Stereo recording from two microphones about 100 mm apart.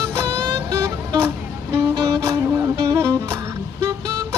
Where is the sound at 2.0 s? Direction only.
40° right (ahead or behind).